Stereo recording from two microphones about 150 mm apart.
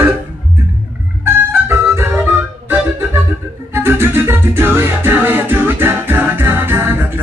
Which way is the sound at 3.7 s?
15° right (ahead or behind).